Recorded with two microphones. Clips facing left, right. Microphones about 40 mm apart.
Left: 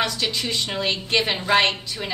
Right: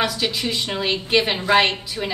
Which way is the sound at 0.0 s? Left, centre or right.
Centre.